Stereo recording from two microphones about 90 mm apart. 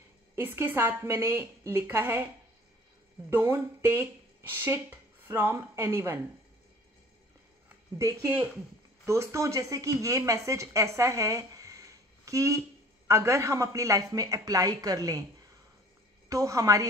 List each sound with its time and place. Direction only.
0.4 s a woman's voice: 20° right (ahead or behind)
3.3 s speech: 25° right (ahead or behind)
9.0 s speech: 35° right (ahead or behind)
16.3 s speech: 40° right (ahead or behind)